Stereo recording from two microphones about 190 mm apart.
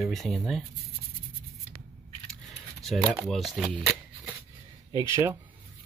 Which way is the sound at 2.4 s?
Centre (ahead or behind).